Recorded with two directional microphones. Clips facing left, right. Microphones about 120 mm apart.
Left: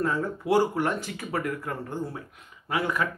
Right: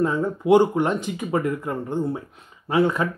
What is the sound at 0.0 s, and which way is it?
Speech, 20° right (ahead or behind).